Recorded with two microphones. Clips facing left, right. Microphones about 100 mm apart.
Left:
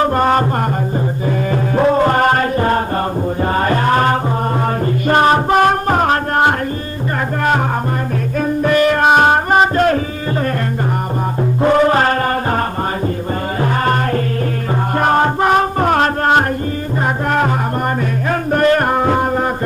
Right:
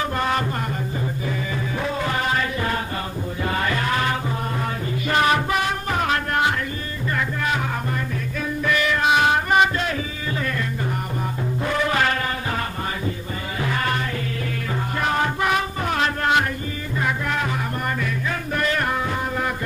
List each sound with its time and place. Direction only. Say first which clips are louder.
0.0 s music: left 9 dB; 45° left (ahead or behind)
8.4 s music: left 9 dB; 45° left (ahead or behind)
11.6 s music: left 10 dB; 45° left (ahead or behind)
13.6 s music: left 7 dB; 40° left (ahead or behind)
15.0 s music: left 9 dB; 45° left (ahead or behind)
18.5 s music: left 11 dB; 45° left (ahead or behind)